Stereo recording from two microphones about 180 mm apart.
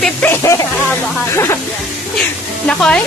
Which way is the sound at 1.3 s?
15° left (ahead or behind).